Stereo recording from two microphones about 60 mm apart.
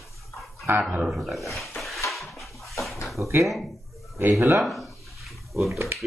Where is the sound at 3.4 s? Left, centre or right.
Centre.